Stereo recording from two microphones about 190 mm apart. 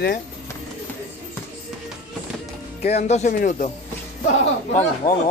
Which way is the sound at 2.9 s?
35° left (ahead or behind).